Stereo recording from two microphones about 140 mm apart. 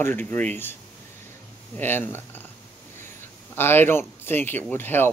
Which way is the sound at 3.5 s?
15° left (ahead or behind).